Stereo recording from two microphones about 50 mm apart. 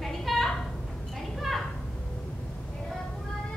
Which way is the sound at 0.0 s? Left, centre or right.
Centre.